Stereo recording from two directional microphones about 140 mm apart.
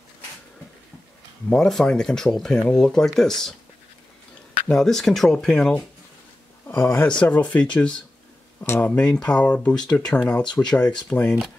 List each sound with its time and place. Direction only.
1.5 s speech: 5° left (ahead or behind)
4.6 s speech: 5° left (ahead or behind)
8.7 s speech: 10° left (ahead or behind)